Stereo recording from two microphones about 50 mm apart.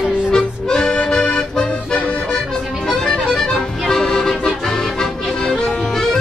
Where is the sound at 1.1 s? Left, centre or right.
Centre.